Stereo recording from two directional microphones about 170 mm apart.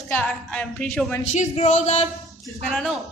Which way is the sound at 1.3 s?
45° left (ahead or behind).